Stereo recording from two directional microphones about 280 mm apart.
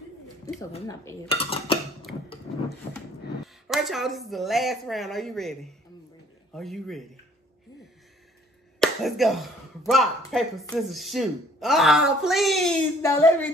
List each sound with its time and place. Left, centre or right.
0.7 s speech: centre
3.6 s speech: centre
8.7 s speech: centre